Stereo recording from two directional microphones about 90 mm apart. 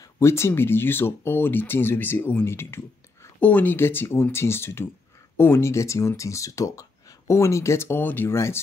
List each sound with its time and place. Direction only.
0.0 s speech: 30° left (ahead or behind)